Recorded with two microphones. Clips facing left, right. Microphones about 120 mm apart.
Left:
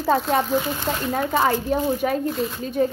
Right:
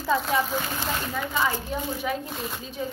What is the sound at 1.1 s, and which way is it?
A woman's voice, 60° left (ahead or behind).